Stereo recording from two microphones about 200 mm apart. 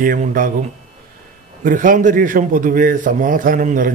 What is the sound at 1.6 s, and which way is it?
A man's voice, 40° right (ahead or behind).